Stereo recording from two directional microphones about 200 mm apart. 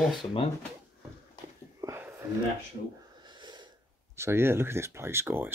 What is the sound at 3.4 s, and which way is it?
Wheeze, 20° right (ahead or behind).